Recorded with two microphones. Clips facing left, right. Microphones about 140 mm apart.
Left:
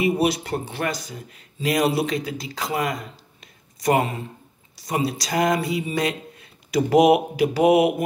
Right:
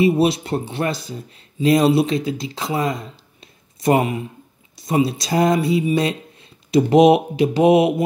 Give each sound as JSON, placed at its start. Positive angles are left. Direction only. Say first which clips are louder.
{"t": 0.0, "sound": "speech", "louder": "right 5 dB", "side_deg": -25}
{"t": 3.8, "sound": "speech", "louder": "right 3 dB", "side_deg": -15}